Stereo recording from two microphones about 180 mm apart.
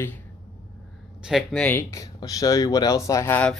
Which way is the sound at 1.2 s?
Centre (ahead or behind).